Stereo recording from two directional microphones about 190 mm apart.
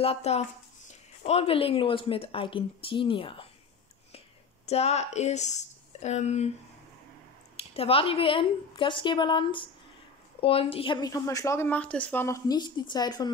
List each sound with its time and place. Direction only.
0.0 s a woman's voice: 35° left (ahead or behind)
4.6 s a woman's voice: 35° left (ahead or behind)
7.5 s a woman's voice: 30° left (ahead or behind)